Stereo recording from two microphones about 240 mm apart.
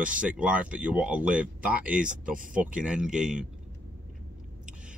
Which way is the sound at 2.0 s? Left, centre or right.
Right.